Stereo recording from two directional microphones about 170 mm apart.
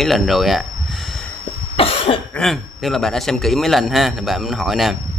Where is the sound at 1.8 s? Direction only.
35° left (ahead or behind).